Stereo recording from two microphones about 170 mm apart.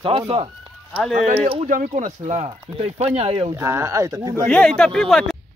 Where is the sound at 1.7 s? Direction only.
50° right (ahead or behind).